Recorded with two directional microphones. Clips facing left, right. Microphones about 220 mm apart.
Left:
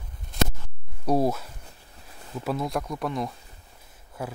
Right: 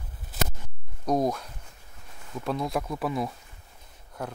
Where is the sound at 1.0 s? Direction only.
5° left (ahead or behind).